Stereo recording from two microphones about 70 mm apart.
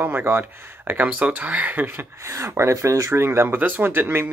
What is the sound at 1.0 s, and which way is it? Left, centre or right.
Speech, right.